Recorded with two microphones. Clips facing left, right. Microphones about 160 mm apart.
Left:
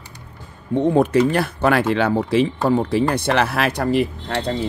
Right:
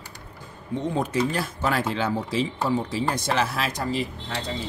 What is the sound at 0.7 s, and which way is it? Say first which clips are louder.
Speech: left 10 dB; 60° left (ahead or behind).